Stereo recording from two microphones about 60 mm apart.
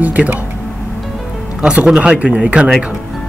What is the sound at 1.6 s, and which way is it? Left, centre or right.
Speech, centre.